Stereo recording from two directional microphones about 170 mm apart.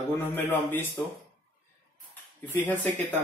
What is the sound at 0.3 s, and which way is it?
Speech, 15° left (ahead or behind).